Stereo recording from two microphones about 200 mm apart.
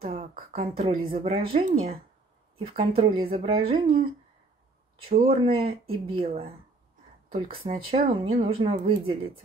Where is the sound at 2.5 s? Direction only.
25° right (ahead or behind).